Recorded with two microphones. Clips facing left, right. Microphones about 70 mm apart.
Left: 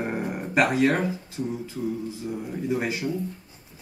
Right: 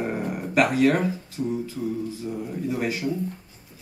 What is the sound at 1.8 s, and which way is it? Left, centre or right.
Mantra, centre.